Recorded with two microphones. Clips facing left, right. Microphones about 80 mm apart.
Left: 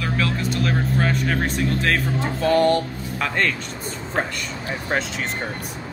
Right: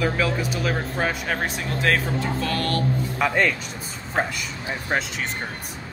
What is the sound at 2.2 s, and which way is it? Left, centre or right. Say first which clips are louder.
Music: left 7 dB; left.